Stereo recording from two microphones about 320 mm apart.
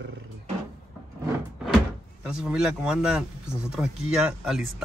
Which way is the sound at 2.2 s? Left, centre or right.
Centre.